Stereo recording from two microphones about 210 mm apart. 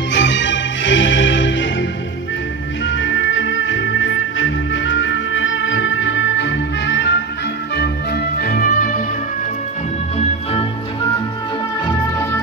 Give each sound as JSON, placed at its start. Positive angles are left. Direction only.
{"t": 0.1, "sound": "music", "side_deg": 60}
{"t": 10.1, "sound": "music", "side_deg": 30}